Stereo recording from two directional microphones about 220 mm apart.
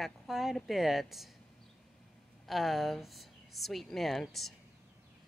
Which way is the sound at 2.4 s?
Centre (ahead or behind).